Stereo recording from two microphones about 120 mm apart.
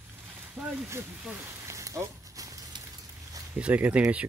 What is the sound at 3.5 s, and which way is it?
Speech, 10° right (ahead or behind).